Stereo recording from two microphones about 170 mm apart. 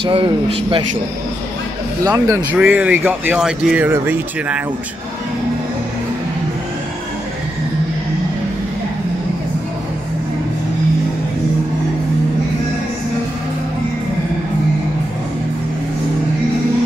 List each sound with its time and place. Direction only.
0.0 s speech: 30° right (ahead or behind)
2.0 s speech: 20° right (ahead or behind)